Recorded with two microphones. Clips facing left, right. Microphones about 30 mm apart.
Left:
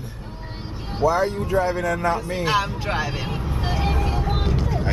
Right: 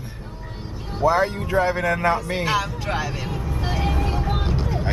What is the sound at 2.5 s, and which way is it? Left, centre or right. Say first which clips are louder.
Speech: left 1 dB; centre.